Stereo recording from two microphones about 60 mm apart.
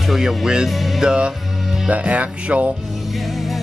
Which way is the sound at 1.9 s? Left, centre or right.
Right.